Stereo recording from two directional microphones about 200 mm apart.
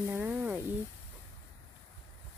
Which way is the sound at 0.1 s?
10° right (ahead or behind).